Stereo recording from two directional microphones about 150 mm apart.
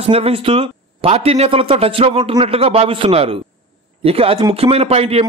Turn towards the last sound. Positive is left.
turn(degrees=-40)  # may be behind; listen again after turning